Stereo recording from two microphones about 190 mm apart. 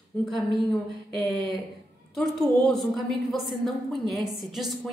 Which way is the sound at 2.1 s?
Centre (ahead or behind).